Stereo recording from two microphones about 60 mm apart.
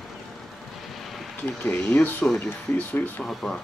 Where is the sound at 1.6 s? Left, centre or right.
Left.